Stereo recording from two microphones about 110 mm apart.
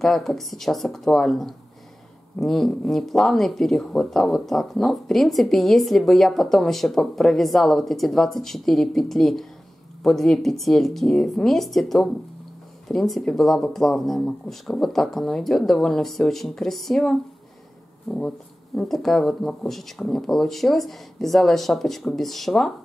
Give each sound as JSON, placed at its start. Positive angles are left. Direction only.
{"t": 0.0, "sound": "speech", "side_deg": 0}